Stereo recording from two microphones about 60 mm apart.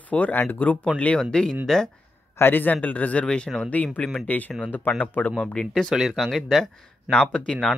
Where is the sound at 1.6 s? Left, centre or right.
Centre.